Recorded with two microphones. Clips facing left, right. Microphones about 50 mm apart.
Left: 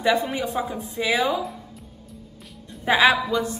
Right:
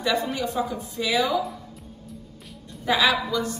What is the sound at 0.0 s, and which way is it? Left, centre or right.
Speech, left.